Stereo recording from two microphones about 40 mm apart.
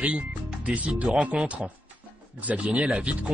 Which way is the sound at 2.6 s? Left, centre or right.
Right.